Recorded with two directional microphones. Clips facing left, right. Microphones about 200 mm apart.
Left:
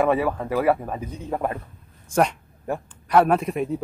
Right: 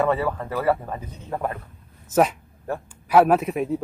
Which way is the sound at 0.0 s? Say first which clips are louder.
Left 2 dB; 10° left (ahead or behind).